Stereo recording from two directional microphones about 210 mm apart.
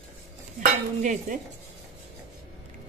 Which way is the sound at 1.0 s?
35° right (ahead or behind).